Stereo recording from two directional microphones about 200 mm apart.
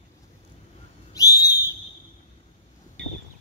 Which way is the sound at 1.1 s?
15° left (ahead or behind).